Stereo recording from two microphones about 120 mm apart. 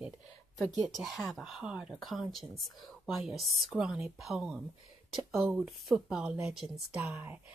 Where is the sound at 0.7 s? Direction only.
70° right (ahead or behind).